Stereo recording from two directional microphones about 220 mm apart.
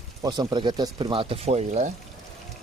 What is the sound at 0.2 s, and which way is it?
Speech, 15° right (ahead or behind).